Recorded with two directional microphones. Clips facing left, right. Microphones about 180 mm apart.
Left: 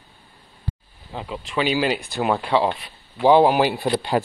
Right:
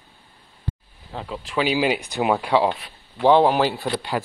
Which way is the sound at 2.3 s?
5° right (ahead or behind).